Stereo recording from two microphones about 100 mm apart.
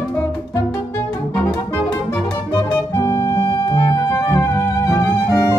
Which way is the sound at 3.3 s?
45° left (ahead or behind).